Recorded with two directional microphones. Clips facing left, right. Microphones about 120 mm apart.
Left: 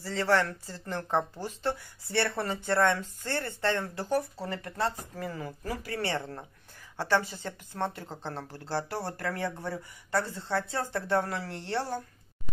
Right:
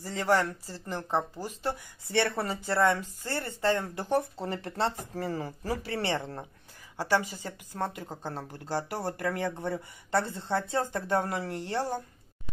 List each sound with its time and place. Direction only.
0.0 s speech: 15° right (ahead or behind)
0.8 s speech: 5° right (ahead or behind)
2.3 s speech: 5° right (ahead or behind)